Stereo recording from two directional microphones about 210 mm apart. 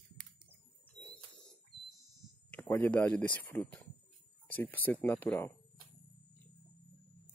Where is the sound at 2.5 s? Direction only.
10° left (ahead or behind).